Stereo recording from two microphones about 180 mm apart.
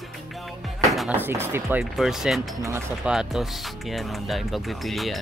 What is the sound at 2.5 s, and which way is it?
Speech, 15° right (ahead or behind).